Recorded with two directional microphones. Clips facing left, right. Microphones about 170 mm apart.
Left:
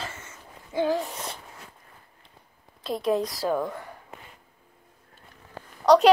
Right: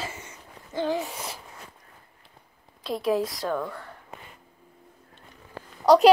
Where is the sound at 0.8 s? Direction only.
Centre (ahead or behind).